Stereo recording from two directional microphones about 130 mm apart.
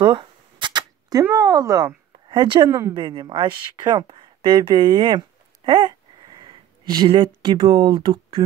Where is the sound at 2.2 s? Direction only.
35° right (ahead or behind).